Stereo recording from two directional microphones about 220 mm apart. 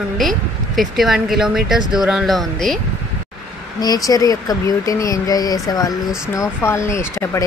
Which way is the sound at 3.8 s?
15° left (ahead or behind).